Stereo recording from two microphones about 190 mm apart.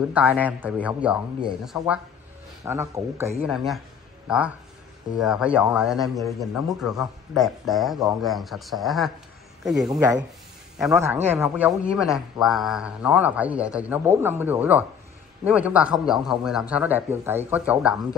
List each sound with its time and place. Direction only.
0.1 s a man's voice: 10° right (ahead or behind)
2.6 s a man's voice: 15° right (ahead or behind)
3.4 s a man's voice: centre (ahead or behind)
9.8 s a man's voice: 15° right (ahead or behind)
11.2 s a man's voice: 10° right (ahead or behind)